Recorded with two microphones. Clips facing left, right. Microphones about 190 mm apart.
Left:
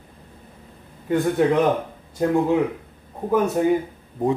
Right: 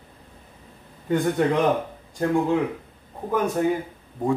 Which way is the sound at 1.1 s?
Centre (ahead or behind).